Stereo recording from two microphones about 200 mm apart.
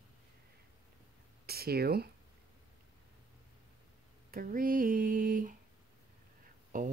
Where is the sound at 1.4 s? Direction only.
50° right (ahead or behind).